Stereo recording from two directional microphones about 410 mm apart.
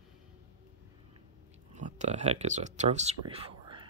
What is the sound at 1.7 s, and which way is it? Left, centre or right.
Speech, centre.